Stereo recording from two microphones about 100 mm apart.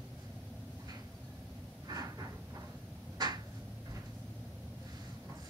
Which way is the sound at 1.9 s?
40° right (ahead or behind).